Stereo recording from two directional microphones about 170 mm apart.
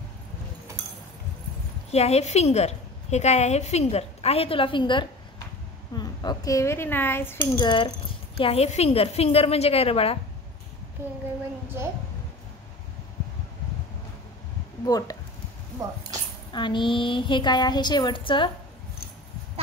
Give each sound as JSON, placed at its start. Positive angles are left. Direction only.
{"t": 1.9, "sound": "a woman's voice", "side_deg": 40}
{"t": 7.5, "sound": "a woman's voice", "side_deg": 25}
{"t": 14.9, "sound": "a woman's voice", "side_deg": 20}
{"t": 16.5, "sound": "a woman's voice", "side_deg": 30}